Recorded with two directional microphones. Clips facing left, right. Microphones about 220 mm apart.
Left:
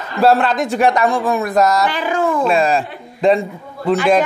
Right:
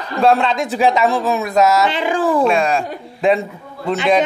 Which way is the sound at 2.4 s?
Centre (ahead or behind).